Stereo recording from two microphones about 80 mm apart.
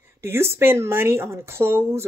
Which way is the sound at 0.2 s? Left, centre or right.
Right.